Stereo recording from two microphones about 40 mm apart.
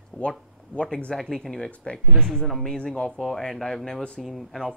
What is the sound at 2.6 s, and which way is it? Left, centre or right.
Speech, centre.